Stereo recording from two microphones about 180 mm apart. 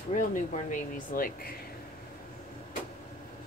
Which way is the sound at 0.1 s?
45° left (ahead or behind).